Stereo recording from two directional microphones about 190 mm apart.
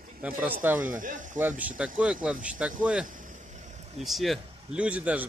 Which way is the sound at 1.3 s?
10° right (ahead or behind).